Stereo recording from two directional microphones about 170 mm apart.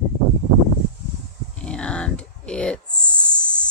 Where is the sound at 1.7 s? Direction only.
5° left (ahead or behind).